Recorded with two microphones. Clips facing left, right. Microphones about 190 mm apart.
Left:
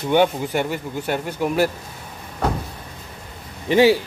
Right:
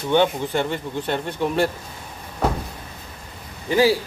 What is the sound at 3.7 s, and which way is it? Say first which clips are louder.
Speech: left 3 dB; 20° left (ahead or behind).